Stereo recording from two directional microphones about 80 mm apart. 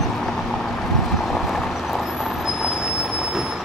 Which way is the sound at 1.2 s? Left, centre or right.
Centre.